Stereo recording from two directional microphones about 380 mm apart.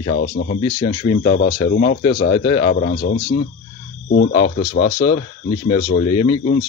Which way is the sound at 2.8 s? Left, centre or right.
Left.